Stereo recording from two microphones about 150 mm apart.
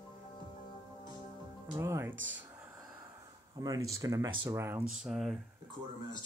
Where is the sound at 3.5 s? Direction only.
25° right (ahead or behind).